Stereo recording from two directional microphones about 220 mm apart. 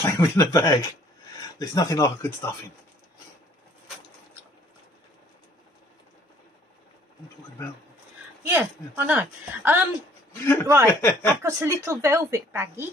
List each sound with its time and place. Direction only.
0.0 s speech: 15° left (ahead or behind)
8.5 s a woman's voice: 10° right (ahead or behind)
10.4 s speech: 10° left (ahead or behind)
11.4 s a woman's voice: 15° right (ahead or behind)